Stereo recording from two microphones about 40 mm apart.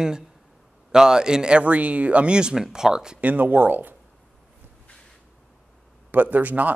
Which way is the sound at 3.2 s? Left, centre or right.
Right.